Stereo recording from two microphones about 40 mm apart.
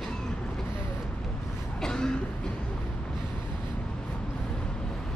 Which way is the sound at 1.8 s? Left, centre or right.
Centre.